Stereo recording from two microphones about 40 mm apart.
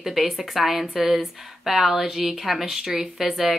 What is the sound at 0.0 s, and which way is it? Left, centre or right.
A woman's voice, centre.